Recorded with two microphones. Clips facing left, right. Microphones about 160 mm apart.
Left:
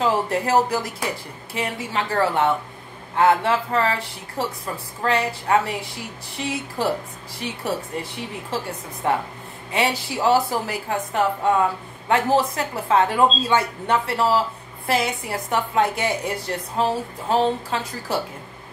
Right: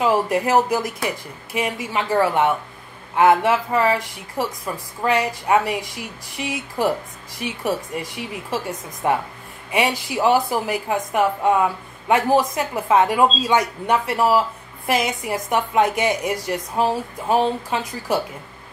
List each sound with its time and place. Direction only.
0.0 s speech: 15° right (ahead or behind)
9.7 s speech: 15° right (ahead or behind)